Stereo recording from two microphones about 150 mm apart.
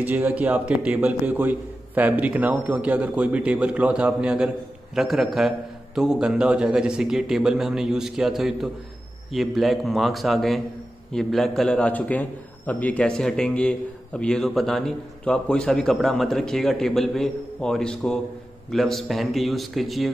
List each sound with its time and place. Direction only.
0.0 s a man's voice: 10° right (ahead or behind)